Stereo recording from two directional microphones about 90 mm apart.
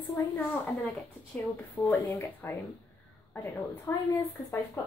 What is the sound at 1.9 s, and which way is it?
Speech, 25° left (ahead or behind).